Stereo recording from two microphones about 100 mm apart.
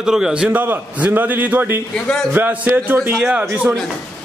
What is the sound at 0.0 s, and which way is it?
A man's voice, 5° right (ahead or behind).